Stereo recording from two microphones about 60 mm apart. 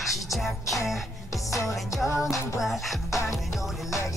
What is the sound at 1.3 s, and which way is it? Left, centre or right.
Music, left.